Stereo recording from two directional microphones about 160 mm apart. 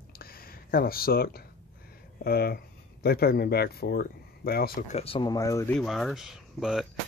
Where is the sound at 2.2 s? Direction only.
75° left (ahead or behind).